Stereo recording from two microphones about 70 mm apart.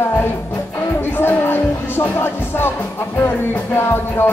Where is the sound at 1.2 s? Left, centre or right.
Left.